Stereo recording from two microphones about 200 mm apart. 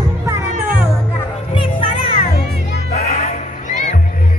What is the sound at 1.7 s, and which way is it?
Children playing, 35° left (ahead or behind).